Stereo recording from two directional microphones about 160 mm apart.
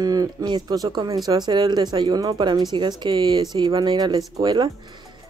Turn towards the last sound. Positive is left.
turn(degrees=-25)  # may be behind; listen again after turning